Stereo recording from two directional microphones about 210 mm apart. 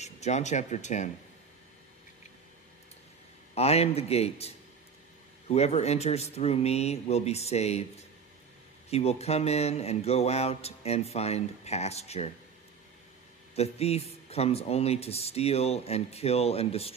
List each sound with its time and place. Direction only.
0.0 s speech: 35° left (ahead or behind)
3.5 s speech: 30° left (ahead or behind)
8.9 s speech: 30° left (ahead or behind)
13.6 s speech: 30° left (ahead or behind)